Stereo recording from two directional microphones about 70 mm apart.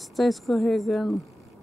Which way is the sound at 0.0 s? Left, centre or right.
Centre.